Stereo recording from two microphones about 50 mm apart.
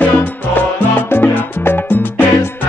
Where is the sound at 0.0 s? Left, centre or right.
Left.